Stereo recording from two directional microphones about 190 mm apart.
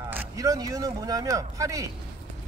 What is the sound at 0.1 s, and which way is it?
Speech, 15° right (ahead or behind).